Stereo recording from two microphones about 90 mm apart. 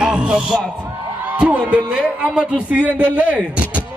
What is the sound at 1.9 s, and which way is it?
A man's voice, 15° right (ahead or behind).